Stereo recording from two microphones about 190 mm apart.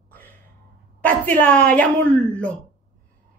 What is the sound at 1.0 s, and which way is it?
A woman's voice, 5° left (ahead or behind).